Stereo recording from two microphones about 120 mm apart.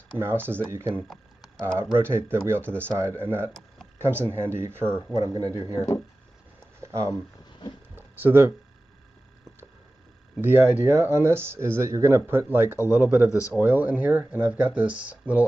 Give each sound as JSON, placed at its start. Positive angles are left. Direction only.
{"t": 0.2, "sound": "speech", "side_deg": -20}
{"t": 1.0, "sound": "a sound", "side_deg": 0}
{"t": 1.6, "sound": "speech", "side_deg": -20}
{"t": 5.1, "sound": "speech", "side_deg": -30}
{"t": 6.8, "sound": "a sound", "side_deg": -25}
{"t": 10.4, "sound": "speech", "side_deg": -20}
{"t": 12.7, "sound": "a man's voice", "side_deg": 25}
{"t": 13.0, "sound": "speech", "side_deg": -20}